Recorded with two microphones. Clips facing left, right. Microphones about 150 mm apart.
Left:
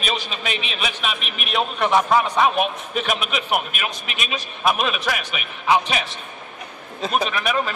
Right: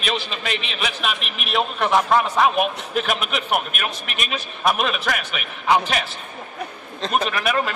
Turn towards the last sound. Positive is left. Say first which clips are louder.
# right 1 dB
turn(degrees=0)  # may be behind; listen again after turning